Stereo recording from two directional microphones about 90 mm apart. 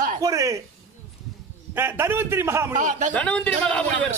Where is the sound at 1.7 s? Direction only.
25° right (ahead or behind).